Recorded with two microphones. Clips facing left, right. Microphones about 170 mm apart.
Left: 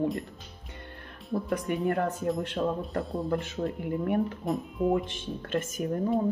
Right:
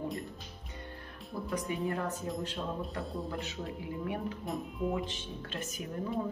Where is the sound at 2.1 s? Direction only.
Centre (ahead or behind).